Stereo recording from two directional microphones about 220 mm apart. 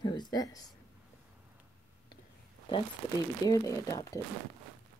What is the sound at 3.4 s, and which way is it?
Speech, 15° left (ahead or behind).